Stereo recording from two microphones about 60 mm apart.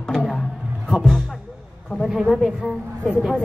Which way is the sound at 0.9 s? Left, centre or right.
Centre.